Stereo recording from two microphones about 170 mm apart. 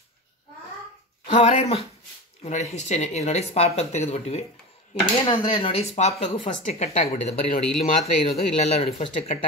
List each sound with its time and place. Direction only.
1.2 s speech: 40° left (ahead or behind)
5.2 s speech: 30° left (ahead or behind)